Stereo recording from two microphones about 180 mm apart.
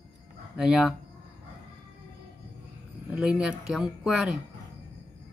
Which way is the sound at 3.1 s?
5° right (ahead or behind).